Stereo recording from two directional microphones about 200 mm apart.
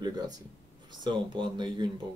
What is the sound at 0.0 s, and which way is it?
Speech, 20° right (ahead or behind).